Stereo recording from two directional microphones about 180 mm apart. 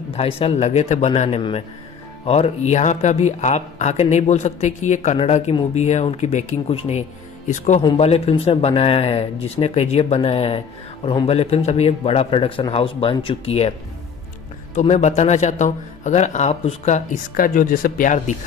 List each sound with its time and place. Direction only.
0.1 s speech: 30° left (ahead or behind)